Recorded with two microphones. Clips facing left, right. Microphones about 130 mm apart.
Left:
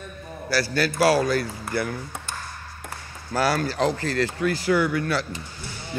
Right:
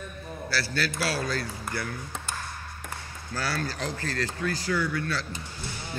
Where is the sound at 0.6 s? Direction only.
55° left (ahead or behind).